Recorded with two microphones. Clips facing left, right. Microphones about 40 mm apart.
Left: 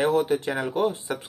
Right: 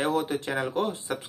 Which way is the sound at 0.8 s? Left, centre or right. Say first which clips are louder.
Left 3 dB; left.